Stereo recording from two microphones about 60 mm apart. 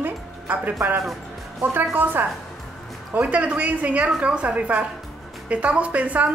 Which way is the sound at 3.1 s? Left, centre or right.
Right.